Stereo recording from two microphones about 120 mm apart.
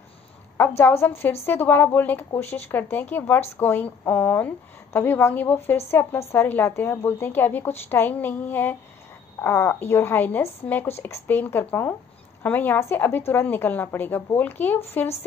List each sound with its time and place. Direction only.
0.6 s a woman's voice: 20° left (ahead or behind)